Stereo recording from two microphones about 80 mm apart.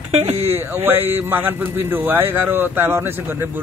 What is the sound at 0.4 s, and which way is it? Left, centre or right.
A man's voice, right.